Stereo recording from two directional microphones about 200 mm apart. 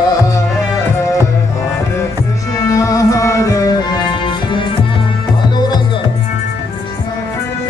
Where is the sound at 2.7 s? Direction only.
15° left (ahead or behind).